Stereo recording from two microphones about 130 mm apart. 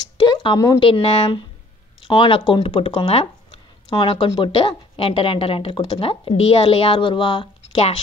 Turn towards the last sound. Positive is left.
turn(degrees=45)  # may be behind; listen again after turning